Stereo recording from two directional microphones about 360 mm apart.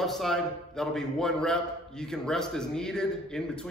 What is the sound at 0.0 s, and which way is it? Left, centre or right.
A man's voice, centre.